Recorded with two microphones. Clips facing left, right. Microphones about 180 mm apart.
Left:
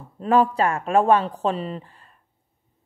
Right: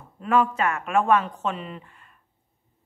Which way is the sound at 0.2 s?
35° left (ahead or behind).